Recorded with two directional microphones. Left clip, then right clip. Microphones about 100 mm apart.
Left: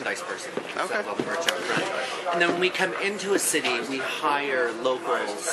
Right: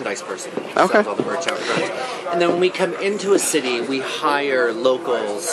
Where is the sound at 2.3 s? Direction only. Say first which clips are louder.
Right 6 dB; 5° right (ahead or behind).